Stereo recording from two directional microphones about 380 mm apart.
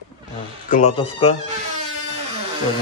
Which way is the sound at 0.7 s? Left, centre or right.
Centre.